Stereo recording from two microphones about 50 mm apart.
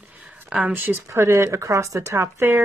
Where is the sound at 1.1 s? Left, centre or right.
Right.